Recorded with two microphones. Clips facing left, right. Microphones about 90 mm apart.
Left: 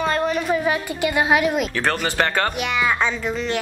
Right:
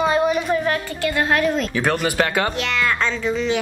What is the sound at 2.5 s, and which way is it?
Speech, 10° left (ahead or behind).